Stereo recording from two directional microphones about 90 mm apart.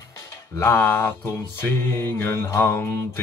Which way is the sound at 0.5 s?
25° left (ahead or behind).